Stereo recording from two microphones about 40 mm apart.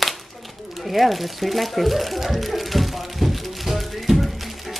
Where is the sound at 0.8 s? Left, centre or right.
Centre.